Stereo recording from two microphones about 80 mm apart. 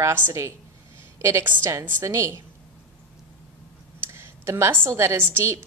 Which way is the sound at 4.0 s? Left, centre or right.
Right.